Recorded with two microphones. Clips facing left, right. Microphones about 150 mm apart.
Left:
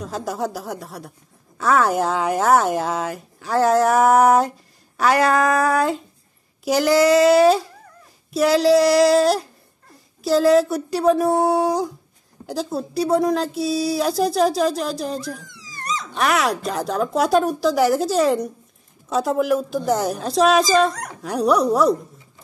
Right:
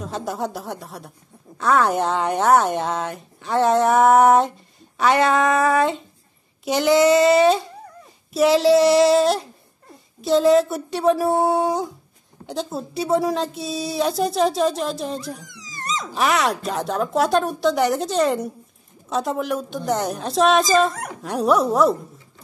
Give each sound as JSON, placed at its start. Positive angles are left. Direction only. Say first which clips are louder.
{"t": 0.0, "sound": "speech", "louder": "left 1 dB", "side_deg": 0}
{"t": 15.4, "sound": "dog", "louder": "even", "side_deg": -20}
{"t": 16.1, "sound": "speech", "louder": "even", "side_deg": 0}